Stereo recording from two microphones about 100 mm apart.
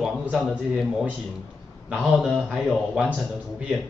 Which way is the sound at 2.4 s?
5° left (ahead or behind).